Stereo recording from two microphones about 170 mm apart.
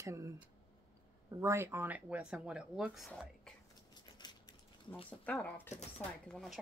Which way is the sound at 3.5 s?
Centre (ahead or behind).